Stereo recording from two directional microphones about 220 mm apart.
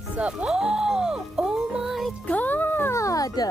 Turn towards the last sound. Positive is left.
turn(degrees=15)  # may be behind; listen again after turning